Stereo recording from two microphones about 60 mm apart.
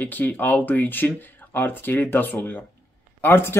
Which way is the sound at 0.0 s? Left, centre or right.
Left.